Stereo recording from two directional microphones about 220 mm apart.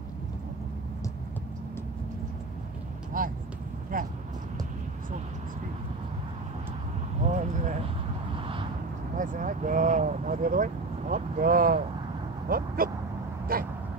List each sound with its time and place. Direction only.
3.1 s speech: 40° right (ahead or behind)
7.2 s vehicle: 35° right (ahead or behind)
9.1 s speech: 35° right (ahead or behind)
12.4 s a sound: 40° right (ahead or behind)
13.5 s speech: 40° right (ahead or behind)